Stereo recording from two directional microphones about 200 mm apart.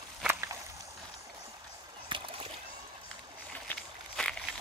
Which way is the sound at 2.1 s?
25° right (ahead or behind).